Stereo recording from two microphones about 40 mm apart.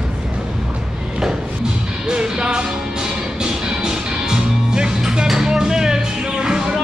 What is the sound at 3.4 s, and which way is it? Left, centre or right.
Music, centre.